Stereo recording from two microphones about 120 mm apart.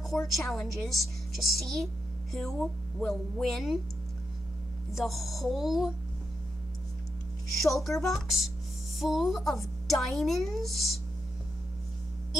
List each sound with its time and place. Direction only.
0.4 s a woman's voice: centre (ahead or behind)
4.9 s a woman's voice: centre (ahead or behind)
7.6 s a woman's voice: centre (ahead or behind)